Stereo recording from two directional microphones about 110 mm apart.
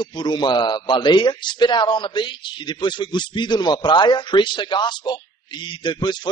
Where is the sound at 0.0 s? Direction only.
45° left (ahead or behind).